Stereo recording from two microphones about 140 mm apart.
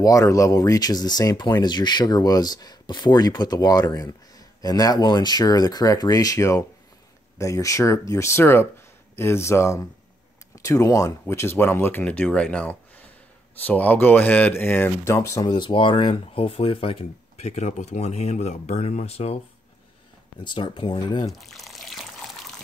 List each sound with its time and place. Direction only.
0.0 s speech: 25° left (ahead or behind)
15.4 s speech: 35° left (ahead or behind)
20.4 s speech: 35° left (ahead or behind)
21.3 s water: centre (ahead or behind)